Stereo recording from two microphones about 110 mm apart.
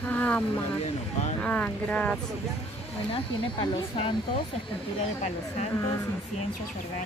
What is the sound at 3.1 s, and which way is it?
Speech, 50° left (ahead or behind).